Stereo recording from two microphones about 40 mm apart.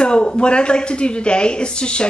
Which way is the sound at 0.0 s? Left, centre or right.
Left.